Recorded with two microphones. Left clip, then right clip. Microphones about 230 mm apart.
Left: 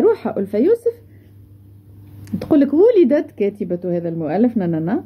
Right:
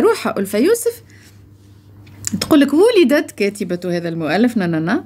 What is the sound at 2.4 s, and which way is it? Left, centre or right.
Speech, centre.